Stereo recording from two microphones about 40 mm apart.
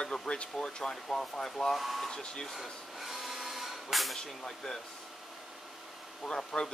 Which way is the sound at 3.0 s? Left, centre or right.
Centre.